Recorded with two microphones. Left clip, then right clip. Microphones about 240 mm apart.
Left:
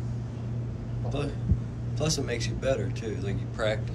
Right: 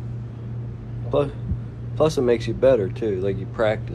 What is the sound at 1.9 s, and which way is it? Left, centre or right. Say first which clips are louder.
Speech: right 12 dB; centre.